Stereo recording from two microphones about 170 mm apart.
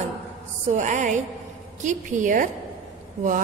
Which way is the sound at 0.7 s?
45° right (ahead or behind).